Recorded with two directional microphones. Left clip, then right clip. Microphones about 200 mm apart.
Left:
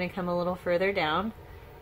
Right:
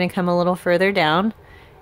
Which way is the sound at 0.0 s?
50° right (ahead or behind).